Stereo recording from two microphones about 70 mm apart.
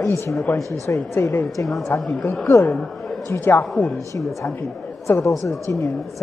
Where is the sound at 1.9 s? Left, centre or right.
Left.